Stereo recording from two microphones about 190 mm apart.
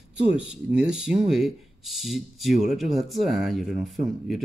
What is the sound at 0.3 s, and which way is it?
Speech, 5° right (ahead or behind).